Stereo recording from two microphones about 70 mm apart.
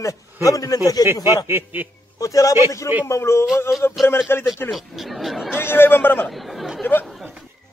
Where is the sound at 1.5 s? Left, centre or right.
Right.